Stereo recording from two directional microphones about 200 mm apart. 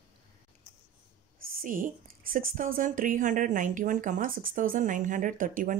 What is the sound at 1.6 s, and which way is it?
A woman's voice, 45° right (ahead or behind).